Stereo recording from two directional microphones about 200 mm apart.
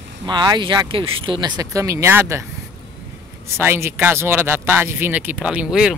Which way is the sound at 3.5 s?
15° right (ahead or behind).